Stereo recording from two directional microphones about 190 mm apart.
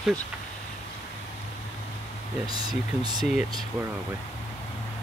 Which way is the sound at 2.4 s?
20° right (ahead or behind).